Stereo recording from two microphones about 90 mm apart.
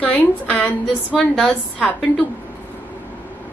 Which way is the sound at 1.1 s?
Centre (ahead or behind).